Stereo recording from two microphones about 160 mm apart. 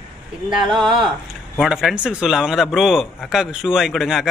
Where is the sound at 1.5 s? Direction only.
Centre (ahead or behind).